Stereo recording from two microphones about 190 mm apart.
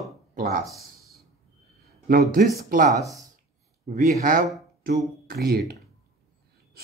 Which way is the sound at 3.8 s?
45° right (ahead or behind).